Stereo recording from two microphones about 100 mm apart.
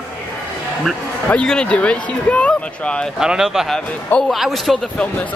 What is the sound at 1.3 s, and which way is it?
Speech, 10° left (ahead or behind).